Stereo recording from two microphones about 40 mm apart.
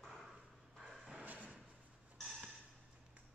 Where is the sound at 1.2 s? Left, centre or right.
Right.